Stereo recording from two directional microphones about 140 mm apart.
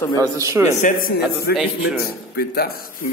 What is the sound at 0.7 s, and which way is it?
Speech, 70° left (ahead or behind).